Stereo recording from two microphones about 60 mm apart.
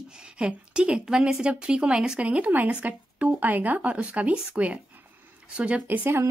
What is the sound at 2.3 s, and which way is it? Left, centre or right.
Speech, right.